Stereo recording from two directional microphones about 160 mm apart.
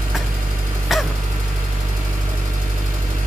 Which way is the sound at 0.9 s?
Centre (ahead or behind).